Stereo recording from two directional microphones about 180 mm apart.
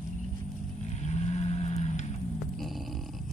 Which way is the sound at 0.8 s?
40° left (ahead or behind).